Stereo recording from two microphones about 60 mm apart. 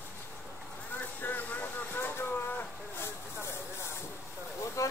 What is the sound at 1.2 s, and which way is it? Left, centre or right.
Vehicle, left.